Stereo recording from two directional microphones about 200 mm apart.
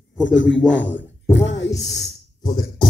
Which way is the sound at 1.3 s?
65° left (ahead or behind).